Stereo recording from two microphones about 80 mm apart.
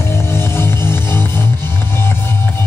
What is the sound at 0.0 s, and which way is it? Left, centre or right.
Music, left.